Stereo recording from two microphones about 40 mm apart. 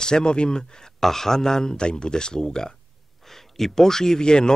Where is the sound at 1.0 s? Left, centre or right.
Centre.